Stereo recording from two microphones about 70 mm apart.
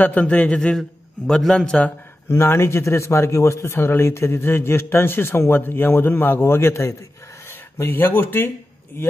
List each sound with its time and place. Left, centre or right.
0.0 s a man's voice: left
0.6 s a man's voice: centre
1.5 s a man's voice: centre
2.2 s speech: left
7.7 s speech: left